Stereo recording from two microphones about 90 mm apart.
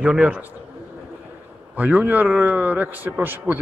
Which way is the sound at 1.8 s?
20° right (ahead or behind).